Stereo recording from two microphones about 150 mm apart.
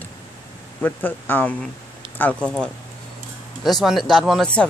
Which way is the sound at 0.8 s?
15° left (ahead or behind).